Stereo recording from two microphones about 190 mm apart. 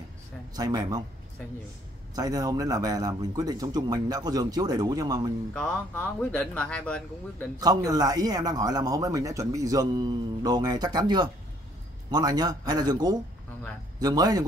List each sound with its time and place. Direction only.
0.6 s speech: 20° right (ahead or behind)
2.1 s speech: 20° right (ahead or behind)
5.5 s speech: 5° left (ahead or behind)
7.5 s speech: 20° right (ahead or behind)